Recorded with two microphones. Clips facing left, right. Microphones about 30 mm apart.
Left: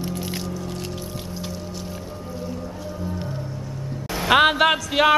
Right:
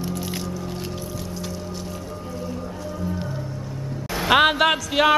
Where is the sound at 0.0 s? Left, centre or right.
Centre.